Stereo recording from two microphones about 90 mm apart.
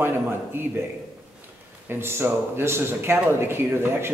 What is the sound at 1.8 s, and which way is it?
A man's voice, 25° right (ahead or behind).